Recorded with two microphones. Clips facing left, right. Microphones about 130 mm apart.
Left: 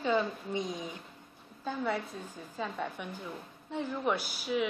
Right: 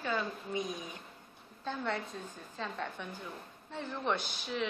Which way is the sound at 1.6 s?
5° left (ahead or behind).